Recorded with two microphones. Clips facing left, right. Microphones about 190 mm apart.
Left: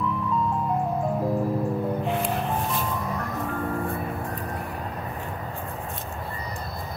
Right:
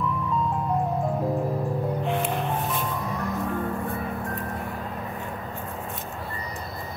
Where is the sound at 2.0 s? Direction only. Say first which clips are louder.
Even; centre (ahead or behind).